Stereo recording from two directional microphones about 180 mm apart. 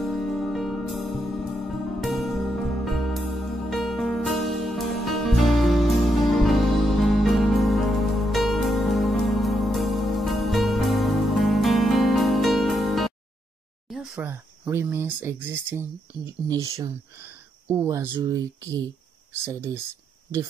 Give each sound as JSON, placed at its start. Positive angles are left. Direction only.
{"t": 0.0, "sound": "music", "side_deg": 0}
{"t": 13.8, "sound": "a sound", "side_deg": 0}
{"t": 14.2, "sound": "speech", "side_deg": -15}